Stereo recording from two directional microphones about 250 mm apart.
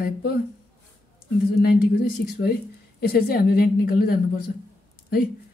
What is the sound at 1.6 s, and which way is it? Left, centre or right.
Speech, left.